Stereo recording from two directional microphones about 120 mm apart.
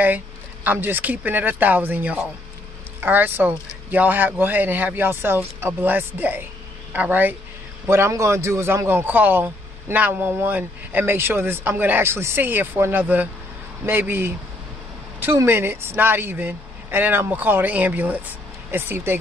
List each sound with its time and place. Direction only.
0.7 s a man's voice: 15° right (ahead or behind)